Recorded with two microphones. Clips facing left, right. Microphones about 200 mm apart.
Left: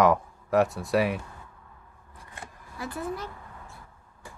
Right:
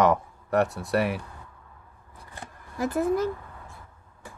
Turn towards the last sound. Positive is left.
turn(degrees=-45)  # may be behind; listen again after turning